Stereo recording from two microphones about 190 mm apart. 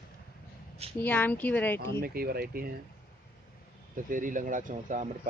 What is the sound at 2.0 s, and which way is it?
Speech, 50° right (ahead or behind).